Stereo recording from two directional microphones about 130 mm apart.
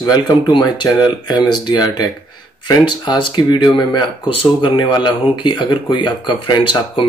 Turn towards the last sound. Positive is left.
turn(degrees=40)  # may be behind; listen again after turning